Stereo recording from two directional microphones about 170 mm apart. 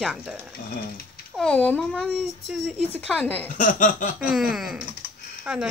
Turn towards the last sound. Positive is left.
turn(degrees=-5)  # may be behind; listen again after turning